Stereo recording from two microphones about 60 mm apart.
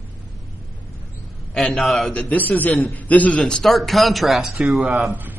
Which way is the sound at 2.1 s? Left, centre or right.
Centre.